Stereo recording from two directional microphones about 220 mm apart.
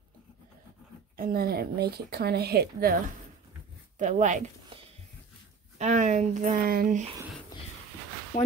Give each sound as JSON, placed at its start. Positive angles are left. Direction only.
{"t": 1.1, "sound": "speech", "side_deg": -40}
{"t": 4.0, "sound": "speech", "side_deg": -35}
{"t": 7.5, "sound": "a sound", "side_deg": 15}
{"t": 8.3, "sound": "speech", "side_deg": 40}